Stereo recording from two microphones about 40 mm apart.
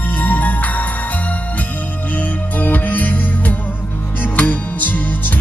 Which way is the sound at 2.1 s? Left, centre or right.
Left.